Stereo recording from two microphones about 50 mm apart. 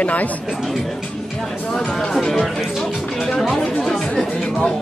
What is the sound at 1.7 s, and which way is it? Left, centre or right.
Speech, centre.